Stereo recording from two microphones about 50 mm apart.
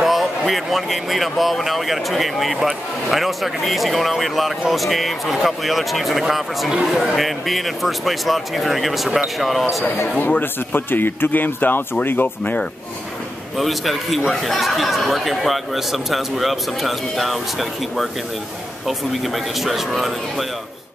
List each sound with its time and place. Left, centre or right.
0.0 s speech: centre
10.4 s a man's voice: left
13.6 s speech: centre